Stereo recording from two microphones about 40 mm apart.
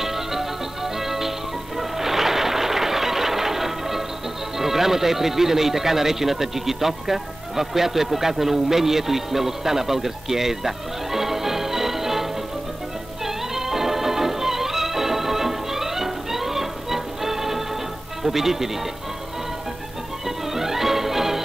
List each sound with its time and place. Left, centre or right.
0.0 s music: centre
4.6 s speech: centre
13.6 s music: centre
18.2 s speech: centre
20.2 s music: centre